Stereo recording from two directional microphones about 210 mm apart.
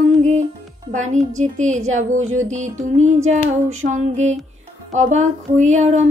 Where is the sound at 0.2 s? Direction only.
35° right (ahead or behind).